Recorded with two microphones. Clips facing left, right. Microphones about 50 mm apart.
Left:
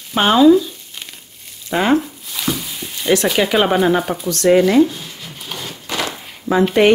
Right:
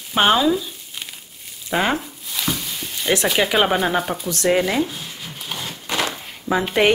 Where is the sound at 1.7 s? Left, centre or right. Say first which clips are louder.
Left 5 dB; centre.